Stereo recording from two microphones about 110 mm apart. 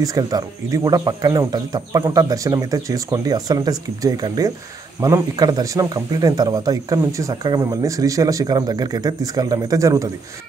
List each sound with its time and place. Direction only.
0.0 s speech: 30° right (ahead or behind)